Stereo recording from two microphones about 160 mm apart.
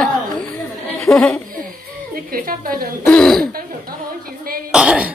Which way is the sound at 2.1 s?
60° right (ahead or behind).